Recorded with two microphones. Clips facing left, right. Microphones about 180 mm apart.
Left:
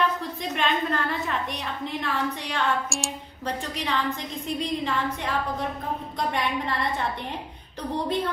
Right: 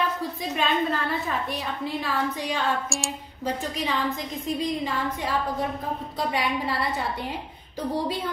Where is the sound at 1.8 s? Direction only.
30° right (ahead or behind).